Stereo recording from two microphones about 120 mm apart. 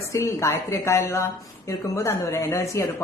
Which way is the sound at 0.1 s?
25° left (ahead or behind).